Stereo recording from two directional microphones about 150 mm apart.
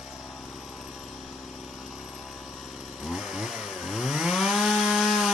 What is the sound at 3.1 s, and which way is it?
Chainsaw, 5° right (ahead or behind).